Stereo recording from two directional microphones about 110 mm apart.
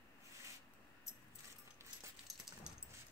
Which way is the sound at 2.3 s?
Centre (ahead or behind).